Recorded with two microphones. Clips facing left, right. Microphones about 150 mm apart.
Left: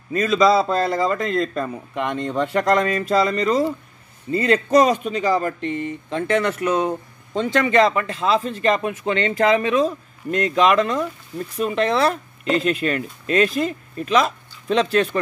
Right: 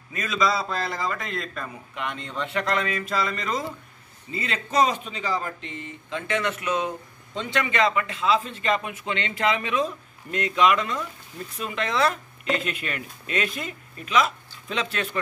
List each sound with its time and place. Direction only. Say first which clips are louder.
0.1 s a man's voice: left 9 dB; 35° left (ahead or behind)
4.3 s speech: left 13 dB; 50° left (ahead or behind)
6.1 s a man's voice: left 6 dB; 40° left (ahead or behind)